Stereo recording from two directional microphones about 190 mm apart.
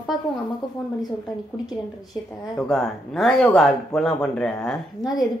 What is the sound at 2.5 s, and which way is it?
Speech, centre (ahead or behind).